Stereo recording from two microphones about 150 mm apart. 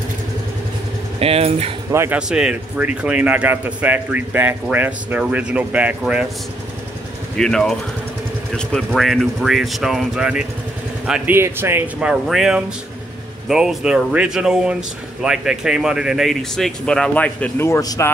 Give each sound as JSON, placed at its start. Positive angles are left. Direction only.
{"t": 1.2, "sound": "speech", "side_deg": -40}
{"t": 1.9, "sound": "speech", "side_deg": -15}
{"t": 2.1, "sound": "speech", "side_deg": -5}
{"t": 7.3, "sound": "speech", "side_deg": 5}